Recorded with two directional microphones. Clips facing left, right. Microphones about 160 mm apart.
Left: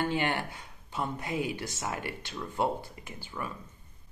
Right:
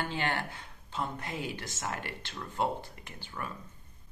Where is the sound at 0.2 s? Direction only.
15° left (ahead or behind).